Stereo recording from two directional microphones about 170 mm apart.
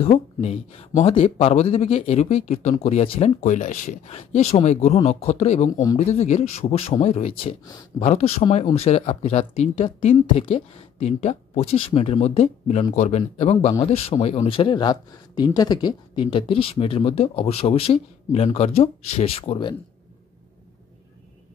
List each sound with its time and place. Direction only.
0.0 s a man's voice: 35° left (ahead or behind)
5.7 s speech: 20° left (ahead or behind)
5.9 s a man's voice: 40° left (ahead or behind)